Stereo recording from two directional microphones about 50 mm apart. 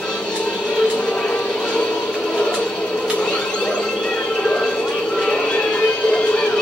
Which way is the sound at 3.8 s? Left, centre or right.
Centre.